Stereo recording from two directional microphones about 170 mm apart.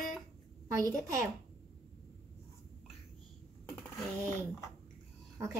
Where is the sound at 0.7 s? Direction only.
20° right (ahead or behind).